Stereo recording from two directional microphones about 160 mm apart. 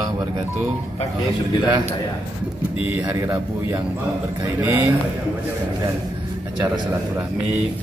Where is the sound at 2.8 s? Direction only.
10° right (ahead or behind).